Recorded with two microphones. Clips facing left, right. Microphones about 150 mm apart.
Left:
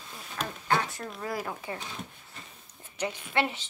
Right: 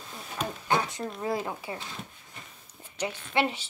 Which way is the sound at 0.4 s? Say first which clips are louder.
Right 1 dB; 20° right (ahead or behind).